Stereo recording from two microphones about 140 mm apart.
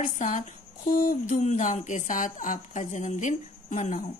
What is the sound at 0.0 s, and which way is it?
Speech, 65° left (ahead or behind).